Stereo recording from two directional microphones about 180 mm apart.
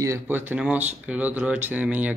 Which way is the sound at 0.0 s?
15° right (ahead or behind).